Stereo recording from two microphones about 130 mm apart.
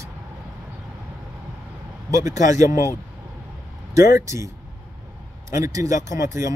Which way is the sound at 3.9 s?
25° right (ahead or behind).